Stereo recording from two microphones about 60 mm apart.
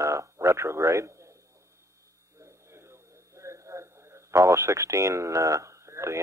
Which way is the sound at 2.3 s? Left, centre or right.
Right.